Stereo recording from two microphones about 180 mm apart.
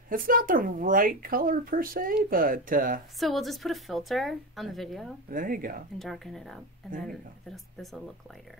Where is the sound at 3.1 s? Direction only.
Centre (ahead or behind).